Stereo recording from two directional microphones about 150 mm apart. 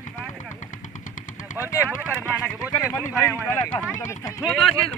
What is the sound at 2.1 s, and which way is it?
Speech, 15° left (ahead or behind).